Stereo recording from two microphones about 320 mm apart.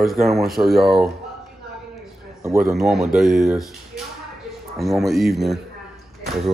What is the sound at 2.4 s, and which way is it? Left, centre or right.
Speech, centre.